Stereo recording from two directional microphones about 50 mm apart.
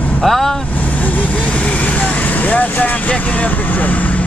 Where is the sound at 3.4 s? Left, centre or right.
Left.